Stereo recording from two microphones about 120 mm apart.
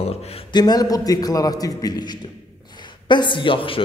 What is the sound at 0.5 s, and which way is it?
A man's voice, 35° left (ahead or behind).